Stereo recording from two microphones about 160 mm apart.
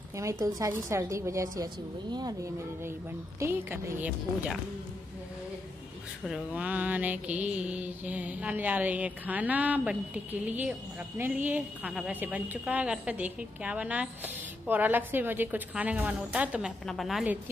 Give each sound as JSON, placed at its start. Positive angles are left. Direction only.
{"t": 0.1, "sound": "a woman's voice", "side_deg": -20}
{"t": 3.3, "sound": "mantra", "side_deg": -15}
{"t": 6.2, "sound": "mantra", "side_deg": -5}
{"t": 16.8, "sound": "a woman's voice", "side_deg": 0}